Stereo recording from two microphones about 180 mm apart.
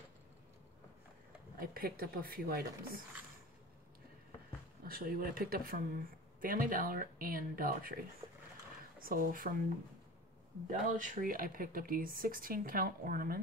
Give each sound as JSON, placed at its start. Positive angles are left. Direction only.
{"t": 1.6, "sound": "a woman's voice", "side_deg": -55}
{"t": 4.8, "sound": "a woman's voice", "side_deg": -55}
{"t": 9.0, "sound": "speech", "side_deg": -50}
{"t": 10.7, "sound": "speech", "side_deg": -45}